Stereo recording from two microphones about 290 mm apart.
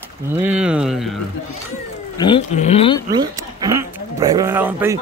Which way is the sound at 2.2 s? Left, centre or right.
Centre.